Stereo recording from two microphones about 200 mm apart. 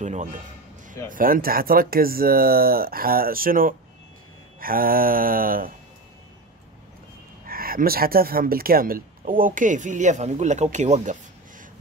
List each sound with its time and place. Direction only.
0.0 s a man's voice: 35° right (ahead or behind)
7.4 s speech: 45° right (ahead or behind)